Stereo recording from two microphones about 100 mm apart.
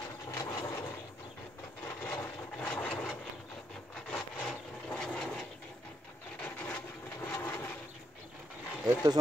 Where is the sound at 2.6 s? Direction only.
10° left (ahead or behind).